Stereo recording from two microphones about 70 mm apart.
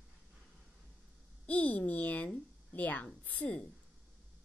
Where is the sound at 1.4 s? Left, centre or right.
Left.